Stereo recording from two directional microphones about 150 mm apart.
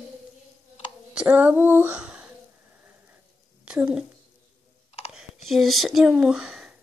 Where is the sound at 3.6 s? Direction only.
5° right (ahead or behind).